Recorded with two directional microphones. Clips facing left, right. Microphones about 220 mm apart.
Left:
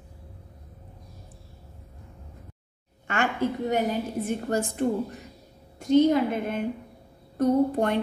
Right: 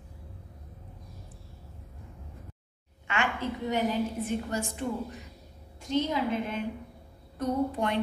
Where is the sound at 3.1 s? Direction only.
45° left (ahead or behind).